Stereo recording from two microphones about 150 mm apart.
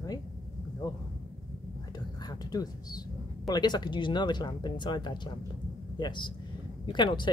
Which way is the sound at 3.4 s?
30° left (ahead or behind).